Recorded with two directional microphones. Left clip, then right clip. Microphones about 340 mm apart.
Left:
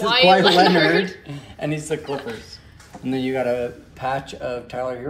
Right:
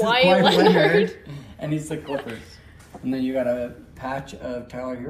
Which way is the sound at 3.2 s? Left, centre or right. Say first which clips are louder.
Left 2 dB; left.